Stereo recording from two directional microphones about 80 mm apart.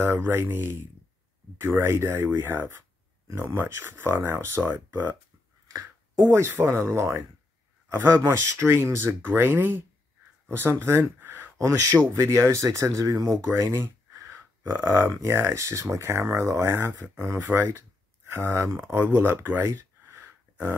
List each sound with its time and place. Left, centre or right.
0.0 s speech: right
5.7 s a sound: right
6.3 s speech: right
7.9 s speech: right
11.5 s speech: right
18.9 s speech: right
20.2 s a sound: right